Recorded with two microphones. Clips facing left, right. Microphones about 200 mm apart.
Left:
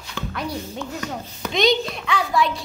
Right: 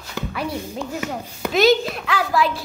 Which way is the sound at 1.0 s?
5° right (ahead or behind).